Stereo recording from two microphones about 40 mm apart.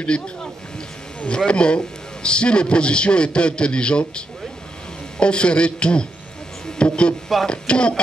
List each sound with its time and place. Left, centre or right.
0.0 s a man's voice: left
5.2 s a man's voice: left